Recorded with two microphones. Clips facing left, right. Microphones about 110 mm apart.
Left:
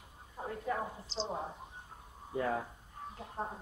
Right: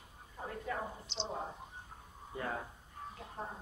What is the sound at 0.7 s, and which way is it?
Speech, 35° left (ahead or behind).